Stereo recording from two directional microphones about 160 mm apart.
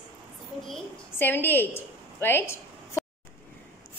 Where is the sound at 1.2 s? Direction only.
10° left (ahead or behind).